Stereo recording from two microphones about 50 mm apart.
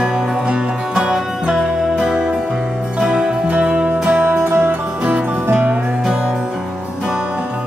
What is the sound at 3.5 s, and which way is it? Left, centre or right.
Music, right.